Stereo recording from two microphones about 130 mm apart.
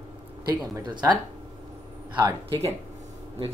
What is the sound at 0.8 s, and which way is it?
Speech, 35° right (ahead or behind).